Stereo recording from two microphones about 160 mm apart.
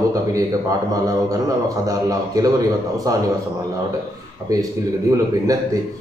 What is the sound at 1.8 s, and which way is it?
A man's voice, 20° right (ahead or behind).